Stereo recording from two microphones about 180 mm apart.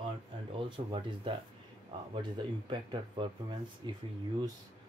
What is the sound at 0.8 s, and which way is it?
Speech, 35° right (ahead or behind).